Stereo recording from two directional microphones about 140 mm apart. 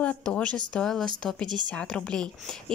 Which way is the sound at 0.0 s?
5° left (ahead or behind).